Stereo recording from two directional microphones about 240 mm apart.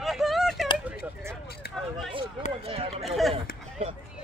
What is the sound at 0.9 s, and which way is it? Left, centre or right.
Speech, centre.